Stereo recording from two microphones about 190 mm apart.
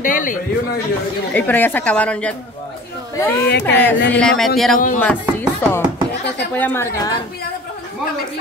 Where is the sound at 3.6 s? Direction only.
10° left (ahead or behind).